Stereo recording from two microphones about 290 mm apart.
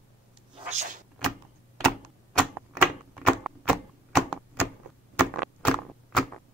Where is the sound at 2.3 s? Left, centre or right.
Centre.